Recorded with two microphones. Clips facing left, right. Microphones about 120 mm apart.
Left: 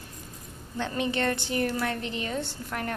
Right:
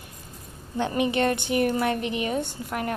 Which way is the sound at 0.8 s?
15° right (ahead or behind).